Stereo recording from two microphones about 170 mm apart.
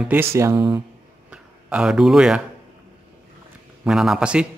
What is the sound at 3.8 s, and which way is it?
Speech, 5° right (ahead or behind).